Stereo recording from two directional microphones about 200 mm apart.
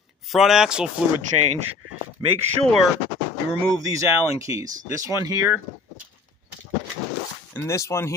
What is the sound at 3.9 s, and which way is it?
Speech, 15° right (ahead or behind).